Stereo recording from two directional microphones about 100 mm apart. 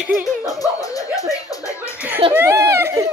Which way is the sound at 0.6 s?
35° left (ahead or behind).